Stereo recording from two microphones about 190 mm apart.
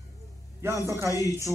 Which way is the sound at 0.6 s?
15° right (ahead or behind).